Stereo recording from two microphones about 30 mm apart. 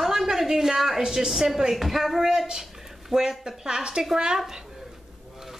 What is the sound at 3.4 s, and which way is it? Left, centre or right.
Speech, right.